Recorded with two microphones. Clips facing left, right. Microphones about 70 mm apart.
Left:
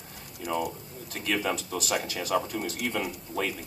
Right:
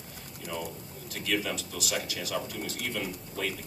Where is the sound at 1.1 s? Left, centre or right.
Left.